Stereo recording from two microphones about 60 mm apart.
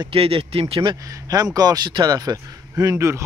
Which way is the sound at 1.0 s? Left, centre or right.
Right.